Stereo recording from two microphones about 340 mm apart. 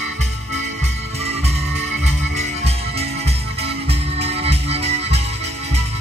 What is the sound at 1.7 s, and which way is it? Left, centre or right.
Music, centre.